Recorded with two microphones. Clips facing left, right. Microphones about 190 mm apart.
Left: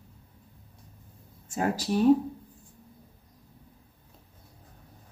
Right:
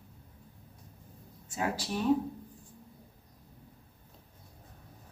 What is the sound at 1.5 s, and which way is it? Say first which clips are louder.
Speech: left 6 dB; 40° left (ahead or behind).